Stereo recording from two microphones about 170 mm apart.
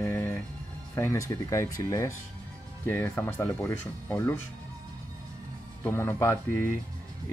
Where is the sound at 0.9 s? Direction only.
15° left (ahead or behind).